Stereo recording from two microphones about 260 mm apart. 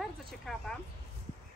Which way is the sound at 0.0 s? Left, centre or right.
Centre.